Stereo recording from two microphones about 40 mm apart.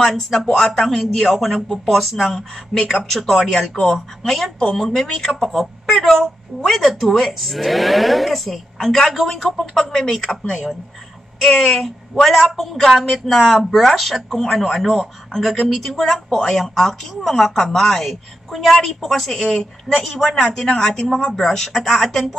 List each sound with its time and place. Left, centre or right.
0.0 s a woman's voice: centre
4.2 s a woman's voice: centre
8.7 s a woman's voice: centre
16.1 s a woman's voice: centre
18.7 s a woman's voice: centre